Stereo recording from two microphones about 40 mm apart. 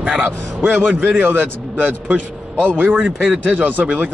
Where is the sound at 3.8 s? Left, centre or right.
Right.